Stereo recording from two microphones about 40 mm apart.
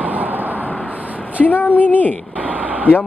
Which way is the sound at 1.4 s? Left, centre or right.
Left.